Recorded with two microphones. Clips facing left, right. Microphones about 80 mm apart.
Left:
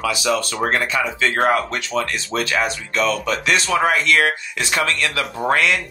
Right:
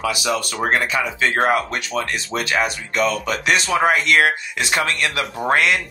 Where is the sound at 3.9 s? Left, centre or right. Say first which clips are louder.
Right 1 dB; right.